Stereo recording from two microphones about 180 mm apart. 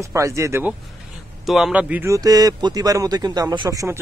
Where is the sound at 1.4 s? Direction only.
Centre (ahead or behind).